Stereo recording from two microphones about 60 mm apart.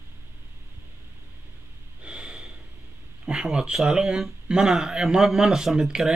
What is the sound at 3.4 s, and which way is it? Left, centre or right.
Speech, centre.